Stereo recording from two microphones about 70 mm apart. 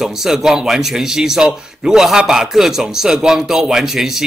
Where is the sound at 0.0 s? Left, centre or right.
Centre.